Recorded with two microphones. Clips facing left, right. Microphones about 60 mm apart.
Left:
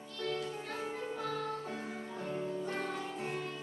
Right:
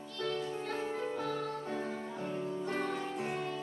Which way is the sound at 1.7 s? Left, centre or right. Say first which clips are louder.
Right 3 dB; centre.